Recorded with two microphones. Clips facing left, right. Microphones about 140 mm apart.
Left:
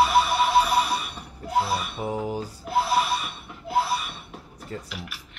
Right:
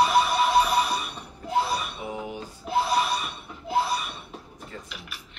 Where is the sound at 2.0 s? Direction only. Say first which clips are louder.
Left 5 dB; 40° left (ahead or behind).